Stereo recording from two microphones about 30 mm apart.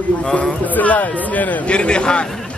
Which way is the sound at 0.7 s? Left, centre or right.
Left.